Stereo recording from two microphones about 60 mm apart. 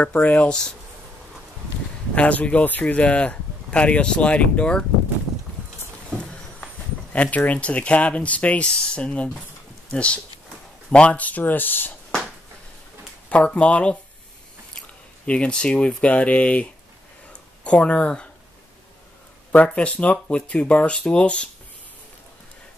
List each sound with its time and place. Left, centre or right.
0.0 s speech: left
2.1 s speech: left
6.1 s speech: centre
13.5 s speech: centre
15.2 s speech: centre
17.3 s a sound: centre
19.5 s speech: left